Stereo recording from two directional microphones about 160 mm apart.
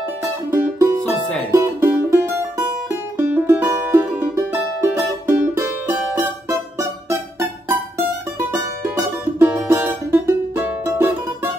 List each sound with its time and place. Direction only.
0.5 s music: 15° right (ahead or behind)
6.8 s music: 20° right (ahead or behind)
8.9 s music: 15° right (ahead or behind)